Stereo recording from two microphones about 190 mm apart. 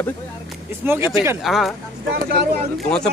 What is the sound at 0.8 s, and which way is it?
Speech, 10° right (ahead or behind).